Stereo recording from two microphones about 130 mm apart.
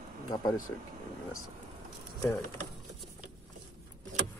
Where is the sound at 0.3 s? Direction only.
30° left (ahead or behind).